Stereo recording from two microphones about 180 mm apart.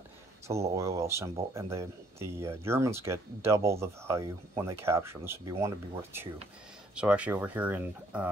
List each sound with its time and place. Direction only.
0.5 s speech: 15° right (ahead or behind)